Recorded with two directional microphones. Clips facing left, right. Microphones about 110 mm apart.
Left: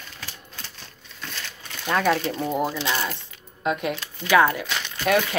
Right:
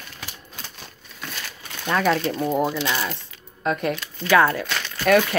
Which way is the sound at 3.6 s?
15° left (ahead or behind).